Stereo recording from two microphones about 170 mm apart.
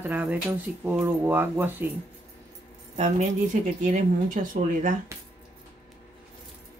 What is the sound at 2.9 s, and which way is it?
Speech, 40° right (ahead or behind).